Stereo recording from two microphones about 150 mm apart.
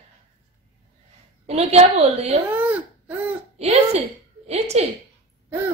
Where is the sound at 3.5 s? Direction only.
45° right (ahead or behind).